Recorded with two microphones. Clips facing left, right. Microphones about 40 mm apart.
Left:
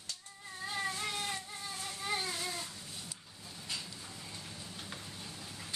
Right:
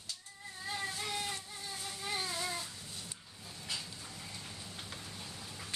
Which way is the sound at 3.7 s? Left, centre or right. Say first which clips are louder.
Even; centre.